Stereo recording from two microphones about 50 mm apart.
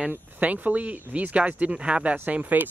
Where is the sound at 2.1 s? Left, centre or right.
Right.